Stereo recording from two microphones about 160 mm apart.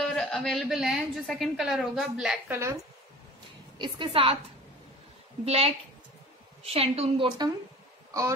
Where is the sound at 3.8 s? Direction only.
30° right (ahead or behind).